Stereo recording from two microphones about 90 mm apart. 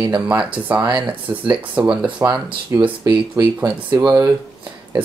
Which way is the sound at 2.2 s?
35° right (ahead or behind).